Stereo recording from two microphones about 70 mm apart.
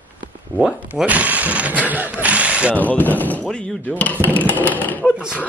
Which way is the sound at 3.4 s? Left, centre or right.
Centre.